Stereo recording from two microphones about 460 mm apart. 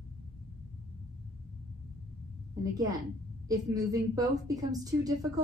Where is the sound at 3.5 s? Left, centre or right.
Centre.